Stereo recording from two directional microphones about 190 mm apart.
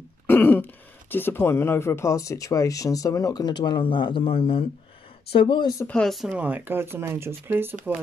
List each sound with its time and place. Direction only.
0.3 s throat clearing: 10° left (ahead or behind)
1.1 s speech: 10° left (ahead or behind)
5.9 s speech: 5° left (ahead or behind)